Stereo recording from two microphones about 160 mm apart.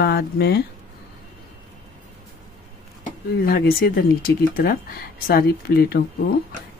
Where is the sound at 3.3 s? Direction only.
70° left (ahead or behind).